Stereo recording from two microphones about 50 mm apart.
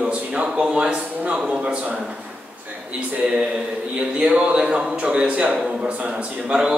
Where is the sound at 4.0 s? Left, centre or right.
Centre.